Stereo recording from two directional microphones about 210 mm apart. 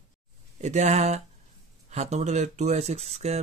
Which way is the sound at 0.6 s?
35° right (ahead or behind).